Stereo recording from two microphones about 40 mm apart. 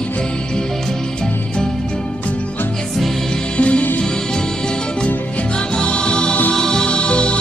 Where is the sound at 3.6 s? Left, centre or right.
Left.